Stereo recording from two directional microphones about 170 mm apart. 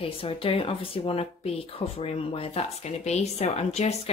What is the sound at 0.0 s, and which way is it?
Speech, 35° left (ahead or behind).